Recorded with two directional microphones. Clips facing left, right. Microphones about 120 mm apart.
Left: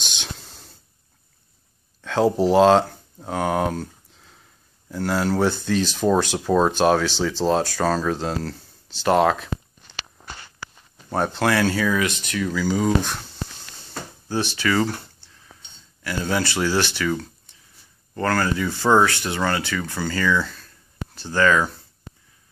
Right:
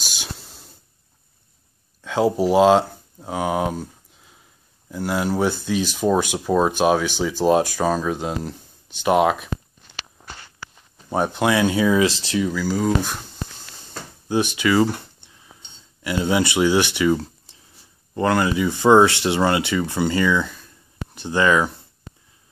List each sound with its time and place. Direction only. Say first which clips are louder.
0.0 s a sound: even; 10° right (ahead or behind)
2.0 s speech: even; 10° right (ahead or behind)
3.2 s a sound: even; 5° right (ahead or behind)
4.9 s speech: even; 10° right (ahead or behind)
11.1 s speech: right 1 dB; 10° right (ahead or behind); by 12.4 s 30° right (ahead or behind)
12.4 s speech: left 2 dB; 10° right (ahead or behind)
14.3 s speech: right 4 dB; 15° right (ahead or behind)